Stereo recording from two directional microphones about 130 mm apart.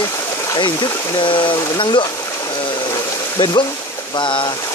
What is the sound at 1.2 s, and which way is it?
Speech, 40° left (ahead or behind).